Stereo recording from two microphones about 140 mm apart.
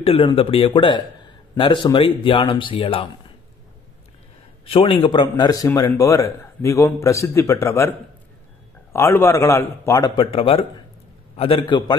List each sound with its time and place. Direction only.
0.0 s speech: 40° left (ahead or behind)
4.6 s a man's voice: 40° left (ahead or behind); by 7.9 s 20° left (ahead or behind)
8.9 s a man's voice: 15° left (ahead or behind)
10.0 s speech: 40° left (ahead or behind)